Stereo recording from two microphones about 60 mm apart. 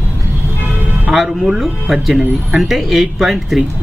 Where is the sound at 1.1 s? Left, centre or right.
Centre.